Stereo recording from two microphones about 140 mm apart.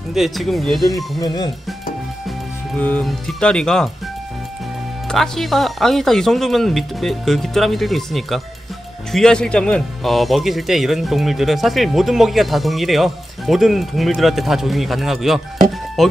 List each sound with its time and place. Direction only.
0.1 s speech: centre (ahead or behind)
1.2 s speech: 30° left (ahead or behind)
2.8 s speech: 10° left (ahead or behind)
5.0 s speech: 5° left (ahead or behind)